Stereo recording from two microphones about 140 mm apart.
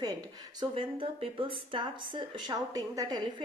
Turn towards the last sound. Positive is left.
turn(degrees=-25)  # may be behind; listen again after turning